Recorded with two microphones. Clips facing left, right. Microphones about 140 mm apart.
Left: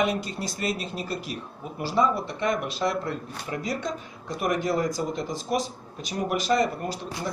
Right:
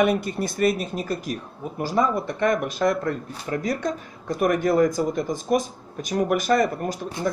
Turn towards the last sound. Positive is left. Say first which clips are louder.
# right 5 dB
turn(degrees=-50)  # may be behind; listen again after turning